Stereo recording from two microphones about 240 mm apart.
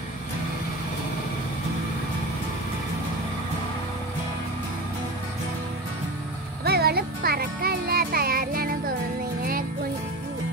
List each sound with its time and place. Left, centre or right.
6.6 s music: right